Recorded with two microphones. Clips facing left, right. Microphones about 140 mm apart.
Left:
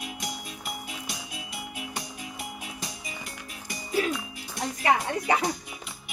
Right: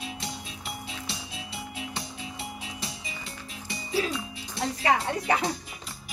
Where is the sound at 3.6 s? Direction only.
30° right (ahead or behind).